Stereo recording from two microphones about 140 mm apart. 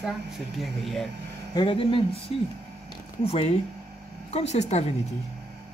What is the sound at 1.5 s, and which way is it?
A woman's voice, 35° left (ahead or behind).